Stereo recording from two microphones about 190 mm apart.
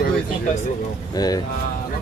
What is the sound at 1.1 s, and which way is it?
Speech, 20° left (ahead or behind).